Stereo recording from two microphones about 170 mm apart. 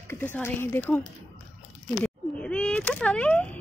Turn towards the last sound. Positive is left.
turn(degrees=5)  # may be behind; listen again after turning